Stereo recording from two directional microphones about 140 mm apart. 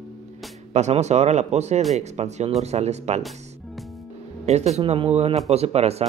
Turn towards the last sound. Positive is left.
turn(degrees=-50)  # may be behind; listen again after turning